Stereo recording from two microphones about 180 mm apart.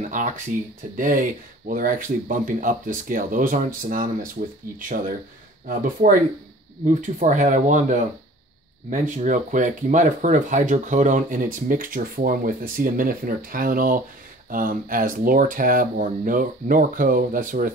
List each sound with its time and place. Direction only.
0.0 s speech: 45° right (ahead or behind)